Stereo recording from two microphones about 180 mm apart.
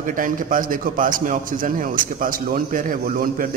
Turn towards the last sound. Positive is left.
turn(degrees=-50)  # may be behind; listen again after turning